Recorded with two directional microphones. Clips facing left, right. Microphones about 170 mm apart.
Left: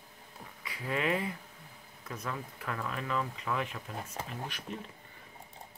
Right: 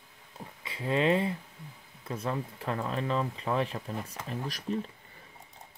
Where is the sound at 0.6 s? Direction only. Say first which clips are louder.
Right 6 dB; 25° right (ahead or behind).